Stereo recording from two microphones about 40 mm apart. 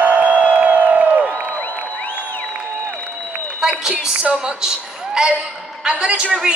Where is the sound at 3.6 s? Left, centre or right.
Centre.